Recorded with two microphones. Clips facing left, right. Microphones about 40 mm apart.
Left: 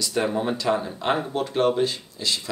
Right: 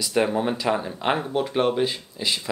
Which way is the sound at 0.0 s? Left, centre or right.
Centre.